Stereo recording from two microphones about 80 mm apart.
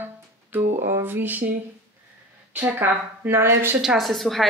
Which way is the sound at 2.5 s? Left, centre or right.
Right.